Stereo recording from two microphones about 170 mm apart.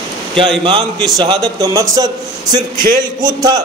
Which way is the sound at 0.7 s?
30° right (ahead or behind).